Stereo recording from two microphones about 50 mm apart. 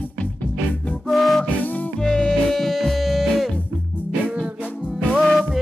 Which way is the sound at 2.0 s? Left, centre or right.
Centre.